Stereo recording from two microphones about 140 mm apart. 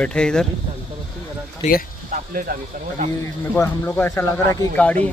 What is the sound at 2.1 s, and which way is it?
Speech, 90° right.